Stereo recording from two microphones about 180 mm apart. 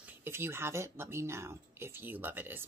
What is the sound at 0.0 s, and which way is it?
Speech, 15° right (ahead or behind).